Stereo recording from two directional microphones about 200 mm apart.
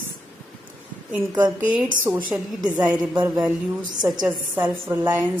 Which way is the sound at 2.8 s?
5° right (ahead or behind).